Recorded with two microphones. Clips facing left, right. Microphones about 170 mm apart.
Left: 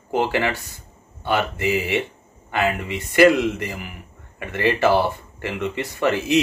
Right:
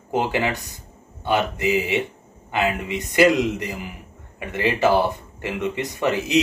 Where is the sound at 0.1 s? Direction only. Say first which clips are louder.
Left 1 dB; 15° right (ahead or behind).